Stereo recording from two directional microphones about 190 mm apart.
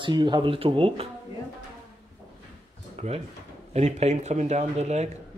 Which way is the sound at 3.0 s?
35° right (ahead or behind).